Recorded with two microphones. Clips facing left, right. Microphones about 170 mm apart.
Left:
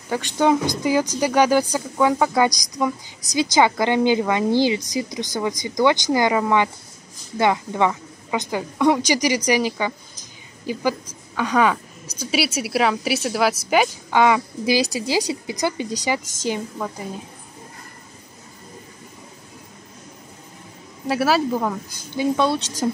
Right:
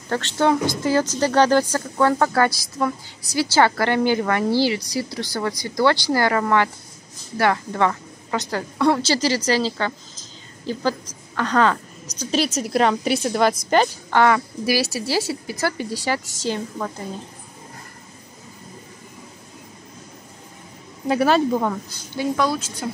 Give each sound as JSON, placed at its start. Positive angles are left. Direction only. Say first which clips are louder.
{"t": 0.1, "sound": "speech", "louder": "left 1 dB", "side_deg": 15}
{"t": 21.1, "sound": "speech", "louder": "right 2 dB", "side_deg": 5}
{"t": 22.1, "sound": "a woman's voice", "louder": "left 2 dB", "side_deg": 20}